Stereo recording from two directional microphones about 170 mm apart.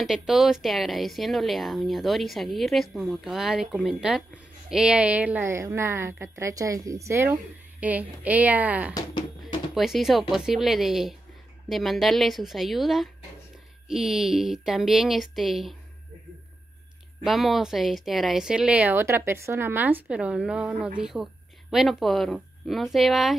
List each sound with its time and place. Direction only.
0.0 s a woman's voice: centre (ahead or behind)
8.9 s music: 25° left (ahead or behind)
9.8 s speech: centre (ahead or behind)
17.2 s speech: centre (ahead or behind)